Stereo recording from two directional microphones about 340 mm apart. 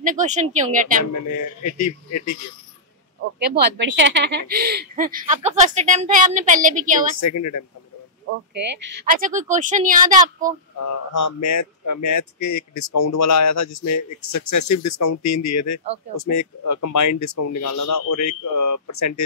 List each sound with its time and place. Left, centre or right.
0.0 s speech: right
1.6 s speech: left
3.3 s speech: right
7.2 s speech: left
8.5 s speech: right
11.1 s speech: left